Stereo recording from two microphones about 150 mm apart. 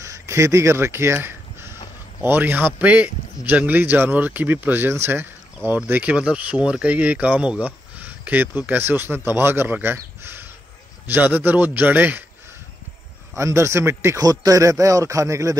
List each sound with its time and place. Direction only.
0.0 s a man's voice: 20° right (ahead or behind)
13.3 s speech: 20° right (ahead or behind)